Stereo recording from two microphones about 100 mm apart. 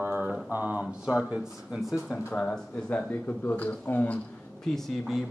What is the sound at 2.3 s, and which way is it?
Speech, 15° left (ahead or behind).